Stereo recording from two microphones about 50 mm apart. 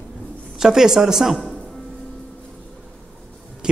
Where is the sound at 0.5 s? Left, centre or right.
Centre.